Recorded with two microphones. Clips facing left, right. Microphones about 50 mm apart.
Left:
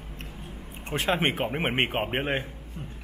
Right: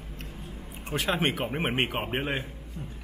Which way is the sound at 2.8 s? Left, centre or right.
Left.